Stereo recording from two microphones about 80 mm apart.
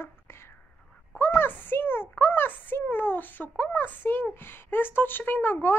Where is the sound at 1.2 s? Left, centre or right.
Left.